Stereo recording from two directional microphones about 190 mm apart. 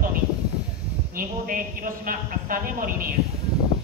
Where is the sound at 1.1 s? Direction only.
45° right (ahead or behind).